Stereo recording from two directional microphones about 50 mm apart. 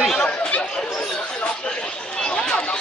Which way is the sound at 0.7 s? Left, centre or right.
Centre.